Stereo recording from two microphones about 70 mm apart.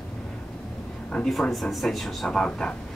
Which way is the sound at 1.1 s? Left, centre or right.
Centre.